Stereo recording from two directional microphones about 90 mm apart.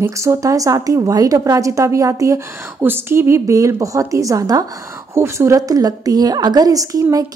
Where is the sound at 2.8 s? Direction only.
25° right (ahead or behind); by 4.6 s 40° right (ahead or behind).